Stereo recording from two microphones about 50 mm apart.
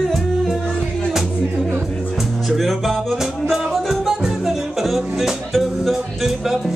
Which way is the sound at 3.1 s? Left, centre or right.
Centre.